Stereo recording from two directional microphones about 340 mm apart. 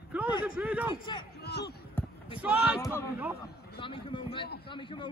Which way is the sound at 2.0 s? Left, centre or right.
Centre.